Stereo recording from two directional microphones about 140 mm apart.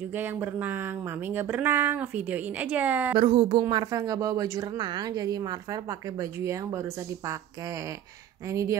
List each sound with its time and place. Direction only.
0.1 s speech: 15° right (ahead or behind)
3.2 s a woman's voice: 35° right (ahead or behind)